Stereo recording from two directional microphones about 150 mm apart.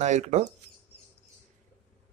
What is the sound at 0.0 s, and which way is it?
Speech, 50° right (ahead or behind).